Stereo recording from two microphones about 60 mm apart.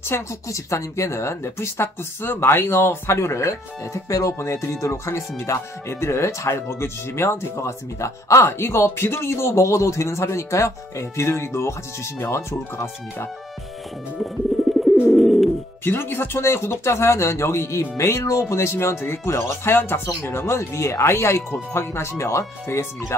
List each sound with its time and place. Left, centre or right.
0.0 s speech: left
14.6 s bird: centre
15.8 s speech: left